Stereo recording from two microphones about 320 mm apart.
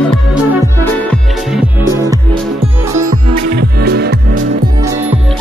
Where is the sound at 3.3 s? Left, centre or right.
Right.